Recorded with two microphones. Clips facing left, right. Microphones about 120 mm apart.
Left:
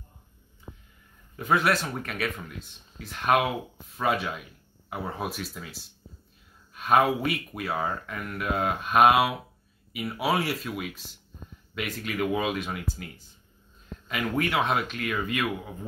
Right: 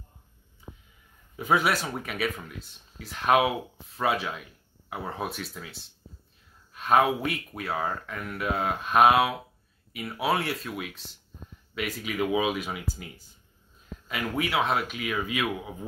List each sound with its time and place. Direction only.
1.3 s speech: 5° right (ahead or behind)